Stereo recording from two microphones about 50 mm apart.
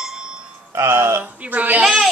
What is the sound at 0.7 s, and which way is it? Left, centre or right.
Speech, right.